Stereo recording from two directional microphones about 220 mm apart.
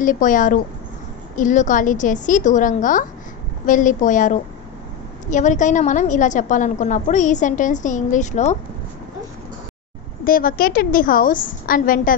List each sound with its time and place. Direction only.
0.0 s a woman's voice: 35° left (ahead or behind)
10.2 s a woman's voice: 40° left (ahead or behind)